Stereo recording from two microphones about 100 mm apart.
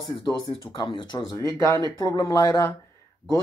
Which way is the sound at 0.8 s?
60° left (ahead or behind).